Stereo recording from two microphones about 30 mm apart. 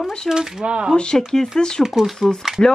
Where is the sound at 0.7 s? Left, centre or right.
Right.